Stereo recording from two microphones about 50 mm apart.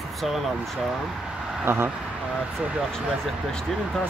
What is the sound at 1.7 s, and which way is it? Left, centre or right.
Speech, right.